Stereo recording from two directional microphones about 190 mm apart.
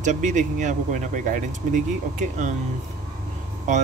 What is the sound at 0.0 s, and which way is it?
Speech, 40° right (ahead or behind).